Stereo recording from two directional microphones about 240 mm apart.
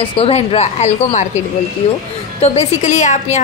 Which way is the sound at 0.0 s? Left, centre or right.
Left.